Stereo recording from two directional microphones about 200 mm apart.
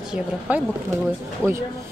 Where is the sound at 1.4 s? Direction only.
5° left (ahead or behind).